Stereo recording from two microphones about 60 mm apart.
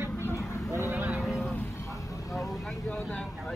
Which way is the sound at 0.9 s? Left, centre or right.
Right.